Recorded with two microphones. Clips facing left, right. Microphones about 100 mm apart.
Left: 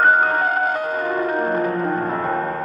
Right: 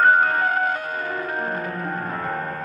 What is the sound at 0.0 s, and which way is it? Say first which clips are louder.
Music: left 1 dB; 20° left (ahead or behind).